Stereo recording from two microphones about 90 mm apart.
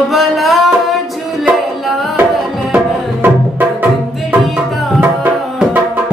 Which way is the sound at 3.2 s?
20° right (ahead or behind).